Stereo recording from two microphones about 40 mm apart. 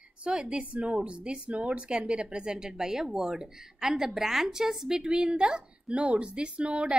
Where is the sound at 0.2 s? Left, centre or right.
Right.